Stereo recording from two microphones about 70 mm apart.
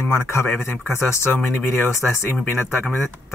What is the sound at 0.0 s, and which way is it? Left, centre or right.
A man's voice, left.